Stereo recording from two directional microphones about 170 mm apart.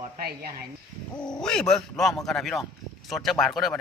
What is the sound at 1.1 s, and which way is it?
Speech, 5° left (ahead or behind).